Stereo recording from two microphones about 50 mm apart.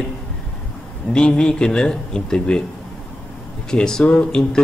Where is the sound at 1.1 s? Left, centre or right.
Centre.